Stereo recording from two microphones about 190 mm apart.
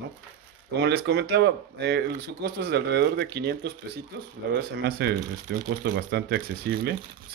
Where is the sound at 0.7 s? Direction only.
60° right (ahead or behind).